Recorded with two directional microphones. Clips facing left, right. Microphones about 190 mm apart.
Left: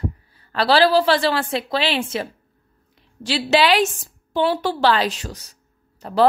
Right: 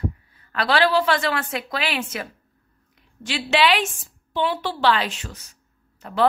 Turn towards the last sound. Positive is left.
turn(degrees=35)  # may be behind; listen again after turning